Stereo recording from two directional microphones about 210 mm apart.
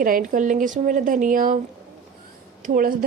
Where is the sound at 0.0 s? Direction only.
40° right (ahead or behind).